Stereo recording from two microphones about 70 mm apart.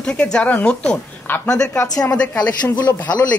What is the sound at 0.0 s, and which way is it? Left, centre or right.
Speech, centre.